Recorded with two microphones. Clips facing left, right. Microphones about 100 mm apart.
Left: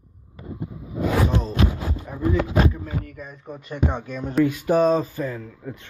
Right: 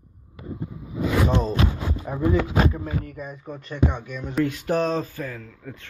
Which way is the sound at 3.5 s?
10° left (ahead or behind).